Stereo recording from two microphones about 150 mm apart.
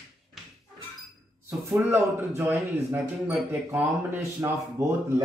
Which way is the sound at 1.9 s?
15° right (ahead or behind).